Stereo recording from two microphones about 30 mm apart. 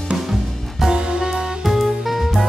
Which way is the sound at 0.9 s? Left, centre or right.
Right.